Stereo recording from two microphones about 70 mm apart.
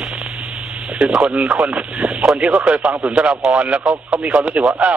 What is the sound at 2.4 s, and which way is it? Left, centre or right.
Speech, centre.